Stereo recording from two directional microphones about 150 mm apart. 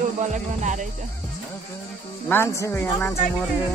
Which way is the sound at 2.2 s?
15° left (ahead or behind).